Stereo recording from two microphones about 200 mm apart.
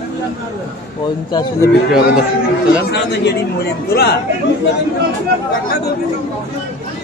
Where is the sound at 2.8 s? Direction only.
55° left (ahead or behind).